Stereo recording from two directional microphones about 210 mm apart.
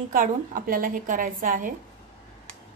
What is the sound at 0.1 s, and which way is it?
A woman's voice, 40° right (ahead or behind).